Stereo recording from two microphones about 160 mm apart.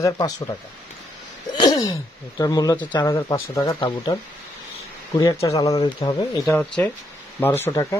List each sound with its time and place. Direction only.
1.6 s speech: 25° left (ahead or behind)
6.4 s speech: 5° left (ahead or behind)